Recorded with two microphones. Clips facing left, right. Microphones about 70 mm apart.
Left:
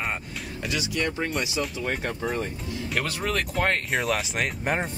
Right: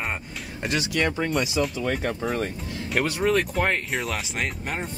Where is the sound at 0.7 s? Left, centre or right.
Right.